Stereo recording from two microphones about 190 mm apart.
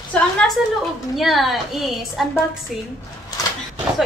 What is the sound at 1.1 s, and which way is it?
Speech, centre (ahead or behind).